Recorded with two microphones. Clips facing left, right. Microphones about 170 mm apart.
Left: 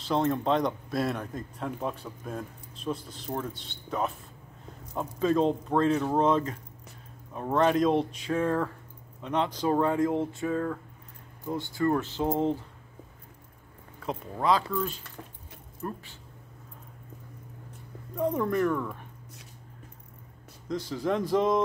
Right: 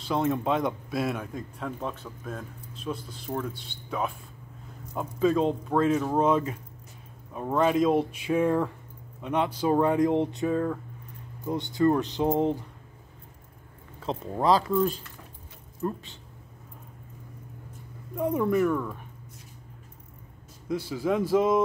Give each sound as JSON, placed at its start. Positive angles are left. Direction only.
{"t": 0.0, "sound": "speech", "side_deg": -5}
{"t": 7.5, "sound": "speech", "side_deg": -5}
{"t": 14.0, "sound": "speech", "side_deg": -30}
{"t": 15.8, "sound": "speech", "side_deg": -20}
{"t": 18.1, "sound": "speech", "side_deg": -10}
{"t": 20.6, "sound": "speech", "side_deg": -10}